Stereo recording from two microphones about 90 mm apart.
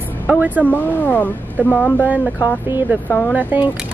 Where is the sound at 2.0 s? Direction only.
15° right (ahead or behind).